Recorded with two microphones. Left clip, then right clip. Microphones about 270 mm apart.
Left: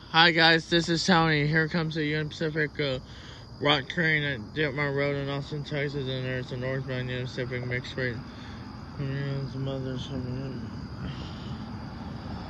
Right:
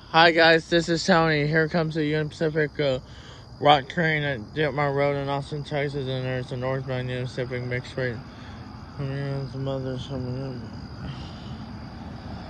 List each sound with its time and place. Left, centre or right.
0.1 s speech: centre